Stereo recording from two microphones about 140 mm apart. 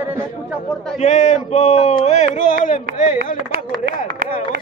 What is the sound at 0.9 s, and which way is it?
Speech, 60° left (ahead or behind).